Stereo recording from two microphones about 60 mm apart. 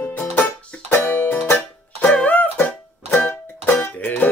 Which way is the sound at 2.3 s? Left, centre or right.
Left.